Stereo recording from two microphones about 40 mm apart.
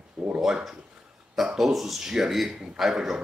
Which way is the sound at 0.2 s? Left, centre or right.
Centre.